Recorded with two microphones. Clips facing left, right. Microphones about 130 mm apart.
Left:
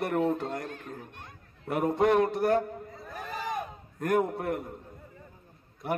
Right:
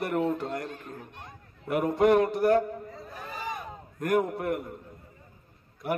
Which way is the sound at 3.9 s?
20° left (ahead or behind).